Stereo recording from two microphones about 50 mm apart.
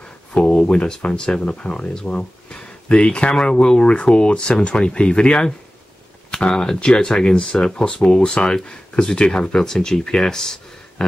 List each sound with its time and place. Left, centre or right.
0.3 s speech: left